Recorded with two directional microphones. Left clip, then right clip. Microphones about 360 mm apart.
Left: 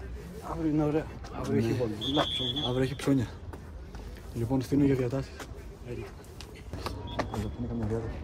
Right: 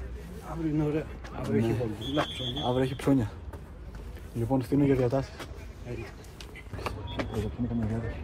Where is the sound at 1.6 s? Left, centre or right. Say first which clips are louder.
Left 1 dB; centre.